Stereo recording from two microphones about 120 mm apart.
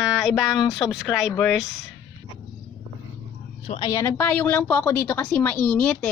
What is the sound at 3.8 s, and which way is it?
A woman's voice, 25° left (ahead or behind).